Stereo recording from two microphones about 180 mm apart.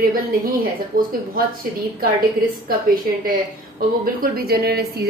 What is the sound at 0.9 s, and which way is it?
A woman's voice, 55° right (ahead or behind).